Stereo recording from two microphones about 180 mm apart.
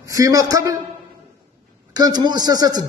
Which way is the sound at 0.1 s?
20° right (ahead or behind).